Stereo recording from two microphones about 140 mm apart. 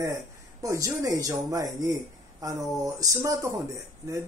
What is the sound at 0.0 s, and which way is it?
Speech, 25° right (ahead or behind).